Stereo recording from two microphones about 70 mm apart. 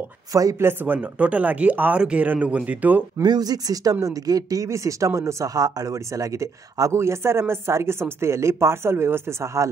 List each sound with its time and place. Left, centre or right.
0.3 s speech: right
0.6 s speech: right
3.2 s speech: right
5.5 s speech: right